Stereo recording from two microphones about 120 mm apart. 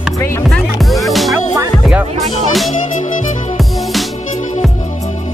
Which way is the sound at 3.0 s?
75° left (ahead or behind).